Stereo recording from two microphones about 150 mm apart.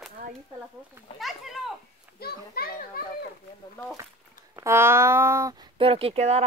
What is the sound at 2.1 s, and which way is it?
Speech, 90° left.